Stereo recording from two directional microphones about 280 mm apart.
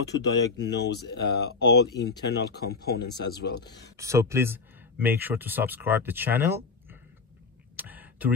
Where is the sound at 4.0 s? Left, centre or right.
Centre.